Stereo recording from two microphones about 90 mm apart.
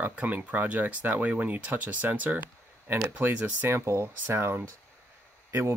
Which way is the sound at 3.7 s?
30° right (ahead or behind).